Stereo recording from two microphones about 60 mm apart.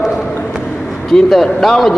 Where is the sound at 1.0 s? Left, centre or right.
Centre.